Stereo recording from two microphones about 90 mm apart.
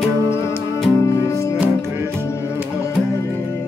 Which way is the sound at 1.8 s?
25° right (ahead or behind).